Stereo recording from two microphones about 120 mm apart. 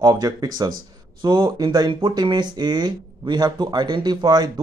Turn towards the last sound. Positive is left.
turn(degrees=-35)  # may be behind; listen again after turning